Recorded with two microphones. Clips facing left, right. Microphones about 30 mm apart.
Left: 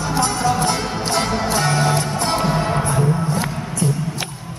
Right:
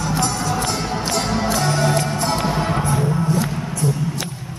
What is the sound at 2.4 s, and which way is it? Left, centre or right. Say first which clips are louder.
Music: left 1 dB; centre.